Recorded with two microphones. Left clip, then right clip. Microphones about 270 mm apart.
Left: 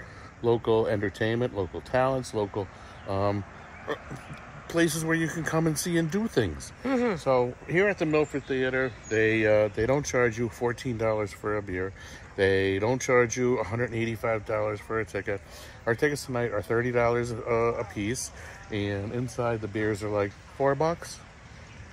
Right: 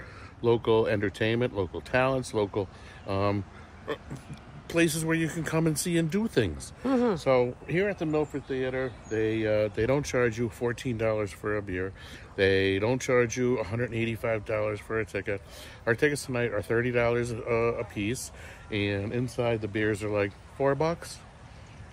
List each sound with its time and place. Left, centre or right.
0.7 s speech: centre
4.7 s speech: centre
7.8 s speech: centre
8.1 s speech: left
9.4 s speech: centre
9.8 s speech: centre